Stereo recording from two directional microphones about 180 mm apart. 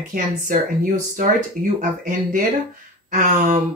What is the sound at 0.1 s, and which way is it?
Speech, 45° right (ahead or behind).